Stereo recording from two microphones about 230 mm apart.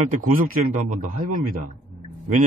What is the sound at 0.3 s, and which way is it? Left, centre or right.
Speech, right.